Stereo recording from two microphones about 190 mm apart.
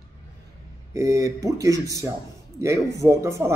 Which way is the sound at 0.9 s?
15° right (ahead or behind).